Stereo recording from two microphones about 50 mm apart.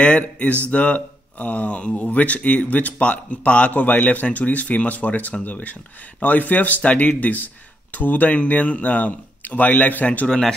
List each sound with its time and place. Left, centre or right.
0.0 s speech: left